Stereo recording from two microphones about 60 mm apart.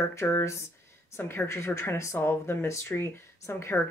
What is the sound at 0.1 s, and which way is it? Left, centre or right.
Speech, left.